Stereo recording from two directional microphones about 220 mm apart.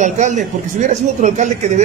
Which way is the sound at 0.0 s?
35° right (ahead or behind).